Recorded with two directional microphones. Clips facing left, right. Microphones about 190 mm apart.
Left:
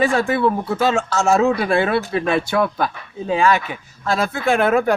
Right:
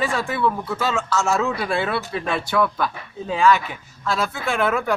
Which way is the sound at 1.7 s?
20° left (ahead or behind).